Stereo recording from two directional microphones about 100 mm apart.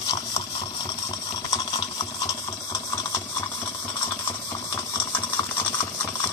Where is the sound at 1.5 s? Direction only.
45° left (ahead or behind).